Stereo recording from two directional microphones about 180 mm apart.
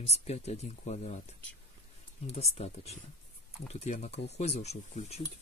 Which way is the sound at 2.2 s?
35° left (ahead or behind).